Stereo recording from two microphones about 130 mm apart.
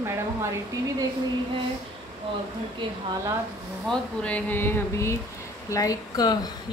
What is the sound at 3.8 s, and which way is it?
Speech, 10° left (ahead or behind).